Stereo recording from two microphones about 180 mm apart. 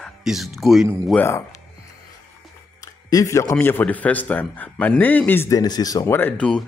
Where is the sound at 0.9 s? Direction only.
10° left (ahead or behind).